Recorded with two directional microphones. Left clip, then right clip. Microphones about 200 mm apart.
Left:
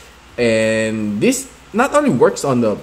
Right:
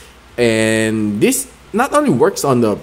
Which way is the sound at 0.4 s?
20° right (ahead or behind).